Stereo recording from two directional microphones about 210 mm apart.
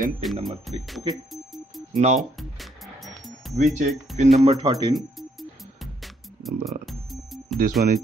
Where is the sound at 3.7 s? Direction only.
35° right (ahead or behind).